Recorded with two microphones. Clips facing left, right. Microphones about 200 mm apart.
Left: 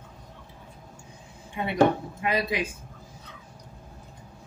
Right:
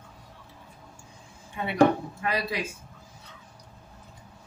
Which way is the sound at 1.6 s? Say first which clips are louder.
Right 1 dB; 20° left (ahead or behind).